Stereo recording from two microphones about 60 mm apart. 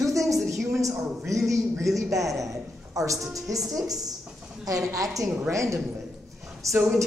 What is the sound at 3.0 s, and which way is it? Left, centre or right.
Speech, right.